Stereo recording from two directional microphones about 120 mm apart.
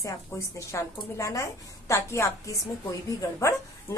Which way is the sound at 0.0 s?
25° left (ahead or behind).